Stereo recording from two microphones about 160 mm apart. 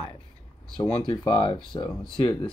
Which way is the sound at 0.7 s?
30° left (ahead or behind).